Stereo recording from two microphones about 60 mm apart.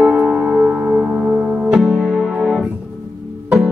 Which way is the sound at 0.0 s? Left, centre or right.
Centre.